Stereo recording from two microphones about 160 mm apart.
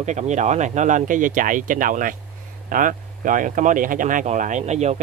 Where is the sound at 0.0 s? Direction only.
50° right (ahead or behind).